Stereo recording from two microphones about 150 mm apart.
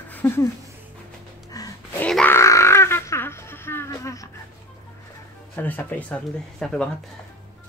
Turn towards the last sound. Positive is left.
turn(degrees=5)  # may be behind; listen again after turning